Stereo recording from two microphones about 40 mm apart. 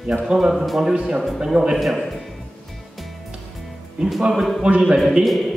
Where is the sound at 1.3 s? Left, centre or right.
Right.